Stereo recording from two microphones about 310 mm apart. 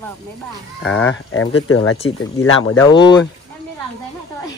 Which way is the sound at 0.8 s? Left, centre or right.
Centre.